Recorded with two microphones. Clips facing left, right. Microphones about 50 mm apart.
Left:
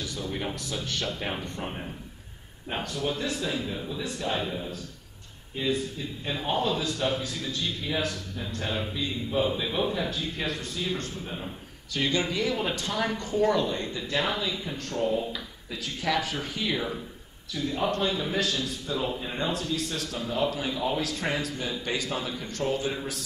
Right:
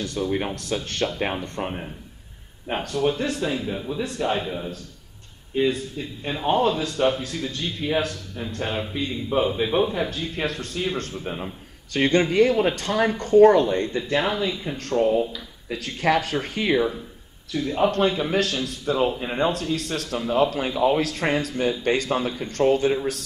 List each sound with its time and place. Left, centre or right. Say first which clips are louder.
0.0 s a sound: right 8 dB; right
0.6 s speech: right 6 dB; right
2.8 s speech: right 7 dB; right
3.6 s speech: right 5 dB; right
6.2 s speech: right 6 dB; right
6.5 s speech: right 7 dB; right
11.2 s speech: right 6 dB; right
11.9 s speech: right 7 dB; right
14.1 s speech: right 4 dB; right
14.8 s speech: right 8 dB; right
19.5 s speech: right 4 dB; right